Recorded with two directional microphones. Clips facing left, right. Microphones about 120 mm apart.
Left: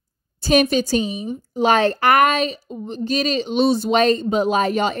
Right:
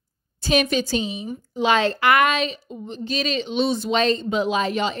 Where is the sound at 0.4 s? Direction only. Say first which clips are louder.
Left 4 dB; 40° left (ahead or behind).